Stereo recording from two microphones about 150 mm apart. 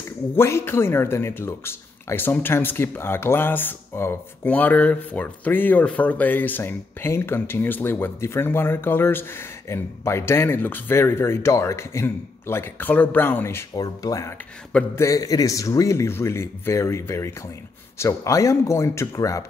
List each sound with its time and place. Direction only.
0.4 s a man's voice: 15° left (ahead or behind)